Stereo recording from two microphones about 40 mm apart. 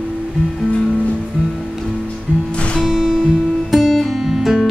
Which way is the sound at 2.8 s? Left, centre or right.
Centre.